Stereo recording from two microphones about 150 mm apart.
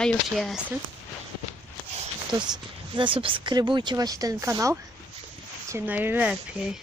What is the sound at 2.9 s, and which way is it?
Speech, 35° right (ahead or behind).